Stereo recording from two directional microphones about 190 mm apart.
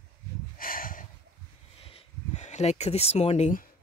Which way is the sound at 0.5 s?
50° left (ahead or behind).